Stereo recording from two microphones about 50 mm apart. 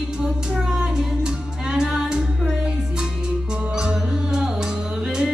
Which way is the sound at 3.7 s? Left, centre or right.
Centre.